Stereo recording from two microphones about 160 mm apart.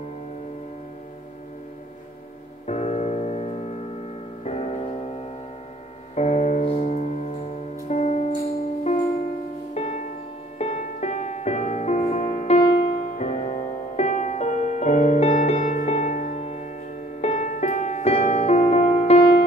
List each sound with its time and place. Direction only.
2.6 s music: 45° left (ahead or behind)
9.8 s music: 40° left (ahead or behind)